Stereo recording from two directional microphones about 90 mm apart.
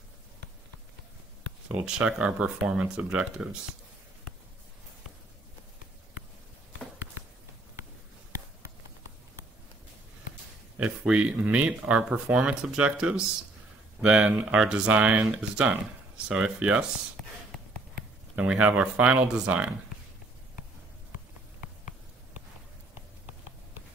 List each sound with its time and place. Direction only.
1.7 s speech: 15° right (ahead or behind)
10.8 s speech: 10° right (ahead or behind)
18.3 s speech: 15° right (ahead or behind)